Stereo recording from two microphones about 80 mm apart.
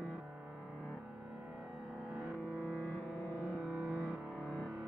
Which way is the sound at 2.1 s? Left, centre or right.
Centre.